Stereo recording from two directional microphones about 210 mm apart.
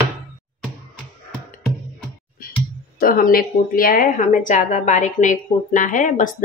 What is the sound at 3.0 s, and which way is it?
A woman's voice, 45° left (ahead or behind).